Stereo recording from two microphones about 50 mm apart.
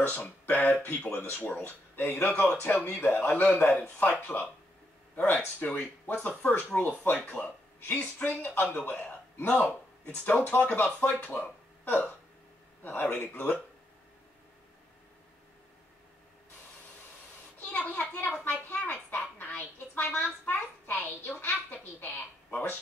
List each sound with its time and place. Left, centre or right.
0.0 s speech: left
17.6 s speech: left
18.5 s a sound: left